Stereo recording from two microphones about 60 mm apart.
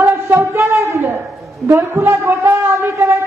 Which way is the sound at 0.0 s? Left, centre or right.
Right.